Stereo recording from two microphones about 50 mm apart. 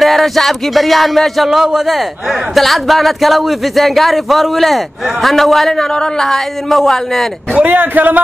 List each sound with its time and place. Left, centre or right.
0.0 s speech: centre
7.5 s speech: right